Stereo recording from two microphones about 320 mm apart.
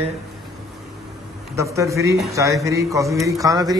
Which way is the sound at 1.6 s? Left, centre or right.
Centre.